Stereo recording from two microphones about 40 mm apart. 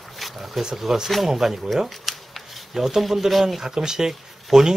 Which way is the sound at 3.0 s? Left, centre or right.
Centre.